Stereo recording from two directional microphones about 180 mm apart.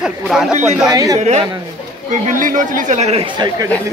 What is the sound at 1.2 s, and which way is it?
A man's voice, 40° right (ahead or behind).